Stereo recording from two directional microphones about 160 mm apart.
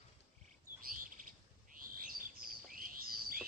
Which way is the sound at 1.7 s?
60° right (ahead or behind).